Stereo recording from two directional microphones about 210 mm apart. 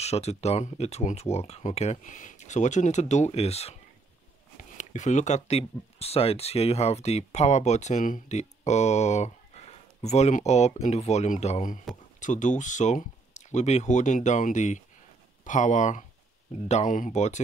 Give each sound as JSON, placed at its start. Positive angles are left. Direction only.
{"t": 0.0, "sound": "speech", "side_deg": 30}